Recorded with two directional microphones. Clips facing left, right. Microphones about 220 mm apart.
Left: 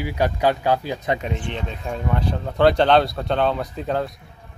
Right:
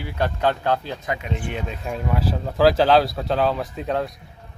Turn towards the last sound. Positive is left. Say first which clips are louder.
# even
turn(degrees=0)  # may be behind; listen again after turning